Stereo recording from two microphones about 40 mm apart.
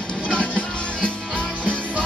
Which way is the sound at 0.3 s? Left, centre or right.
Left.